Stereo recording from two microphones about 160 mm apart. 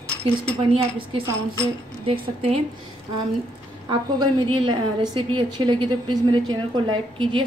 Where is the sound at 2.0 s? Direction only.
35° right (ahead or behind).